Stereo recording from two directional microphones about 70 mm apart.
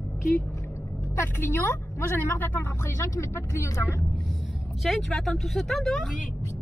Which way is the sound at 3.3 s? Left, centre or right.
Left.